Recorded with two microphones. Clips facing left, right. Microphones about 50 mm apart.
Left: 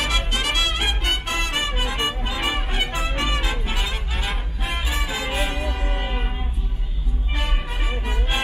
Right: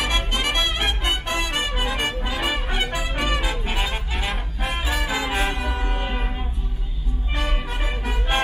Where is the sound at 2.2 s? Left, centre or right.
Centre.